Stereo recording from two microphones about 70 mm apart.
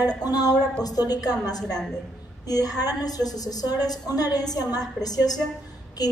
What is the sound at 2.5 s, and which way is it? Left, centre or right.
A woman's voice, left.